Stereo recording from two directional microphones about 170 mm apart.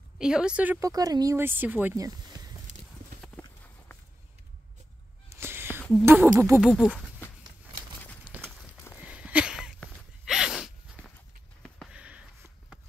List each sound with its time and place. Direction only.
0.2 s a woman's voice: 5° right (ahead or behind)
0.7 s speech: 20° right (ahead or behind)
2.7 s clip-clop: 45° right (ahead or behind)
5.3 s a sound: 15° right (ahead or behind)
6.0 s speech: 15° right (ahead or behind)
6.6 s a woman's voice: 5° right (ahead or behind)
8.4 s walk: centre (ahead or behind)
9.0 s a sound: 5° right (ahead or behind)
11.9 s sniff: 5° right (ahead or behind)